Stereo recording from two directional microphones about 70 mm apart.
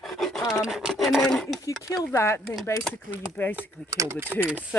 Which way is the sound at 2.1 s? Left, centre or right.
Left.